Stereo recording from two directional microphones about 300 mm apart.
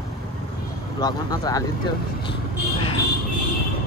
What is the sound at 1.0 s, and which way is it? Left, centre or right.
Speech, centre.